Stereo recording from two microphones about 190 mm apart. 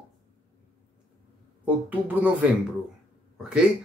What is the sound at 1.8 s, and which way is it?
Speech, 10° right (ahead or behind).